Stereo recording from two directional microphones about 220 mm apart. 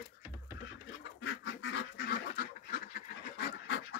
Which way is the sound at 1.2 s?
60° left (ahead or behind).